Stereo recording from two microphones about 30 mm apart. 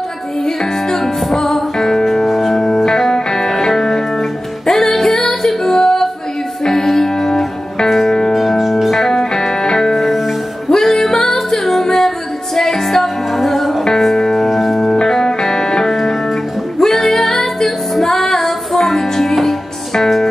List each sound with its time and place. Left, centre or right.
0.9 s music: centre
2.2 s music: centre
2.5 s music: centre
8.5 s music: centre
8.9 s music: centre
13.8 s music: centre
14.3 s music: centre
14.9 s music: centre
15.9 s music: centre